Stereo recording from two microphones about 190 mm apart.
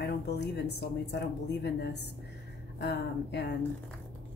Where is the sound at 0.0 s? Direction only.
60° left (ahead or behind).